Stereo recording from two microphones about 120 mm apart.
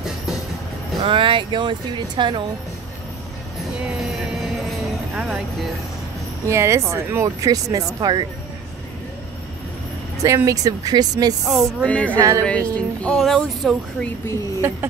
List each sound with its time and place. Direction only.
1.0 s speech: 45° right (ahead or behind)
3.8 s music: 5° right (ahead or behind)
6.4 s speech: 25° right (ahead or behind)
10.2 s speech: 25° right (ahead or behind)
11.4 s speech: centre (ahead or behind)
11.9 s speech: 10° left (ahead or behind)
12.2 s speech: 25° right (ahead or behind)
12.4 s speech: 10° left (ahead or behind)